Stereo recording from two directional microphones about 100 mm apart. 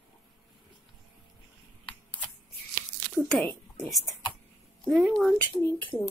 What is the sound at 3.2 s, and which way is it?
A woman's voice, 5° left (ahead or behind).